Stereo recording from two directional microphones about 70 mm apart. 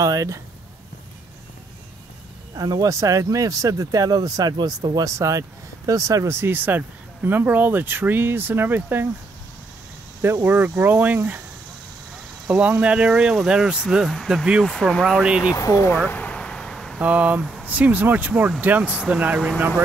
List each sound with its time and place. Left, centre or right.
0.0 s speech: right
2.5 s speech: right
6.3 s speech: right
10.2 s speech: right
12.4 s speech: centre
14.6 s speech: centre
15.0 s speech: centre
15.5 s speech: left
16.1 s vehicle: left
16.3 s vehicle: centre
17.0 s speech: right
17.4 s speech: centre
17.6 s speech: right